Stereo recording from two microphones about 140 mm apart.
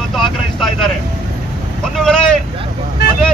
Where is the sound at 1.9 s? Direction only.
5° left (ahead or behind).